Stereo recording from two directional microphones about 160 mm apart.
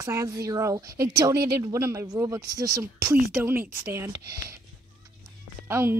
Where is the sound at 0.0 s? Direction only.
20° right (ahead or behind).